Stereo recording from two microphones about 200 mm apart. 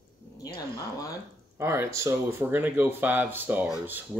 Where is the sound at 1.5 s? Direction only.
15° right (ahead or behind).